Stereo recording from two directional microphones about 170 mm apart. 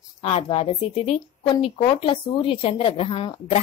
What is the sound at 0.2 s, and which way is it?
Speech, 35° left (ahead or behind).